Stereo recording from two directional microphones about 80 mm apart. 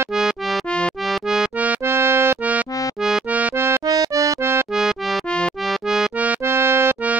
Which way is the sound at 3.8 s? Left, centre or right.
Right.